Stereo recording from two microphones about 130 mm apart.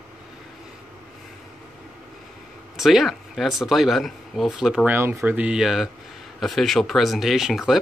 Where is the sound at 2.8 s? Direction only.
Centre (ahead or behind).